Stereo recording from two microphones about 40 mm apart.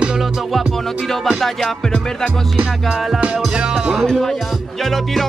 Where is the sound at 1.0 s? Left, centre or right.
Centre.